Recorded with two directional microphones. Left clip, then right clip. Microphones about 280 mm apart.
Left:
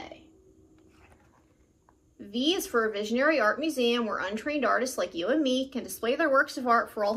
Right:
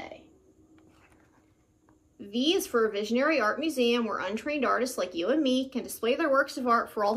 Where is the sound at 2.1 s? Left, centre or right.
Centre.